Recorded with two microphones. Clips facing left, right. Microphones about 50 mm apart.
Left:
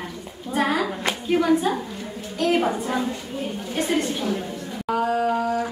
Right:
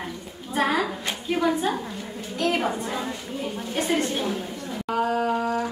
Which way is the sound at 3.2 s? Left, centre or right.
Centre.